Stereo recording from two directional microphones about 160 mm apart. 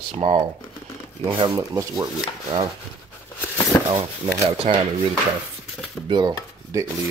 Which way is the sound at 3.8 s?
30° right (ahead or behind).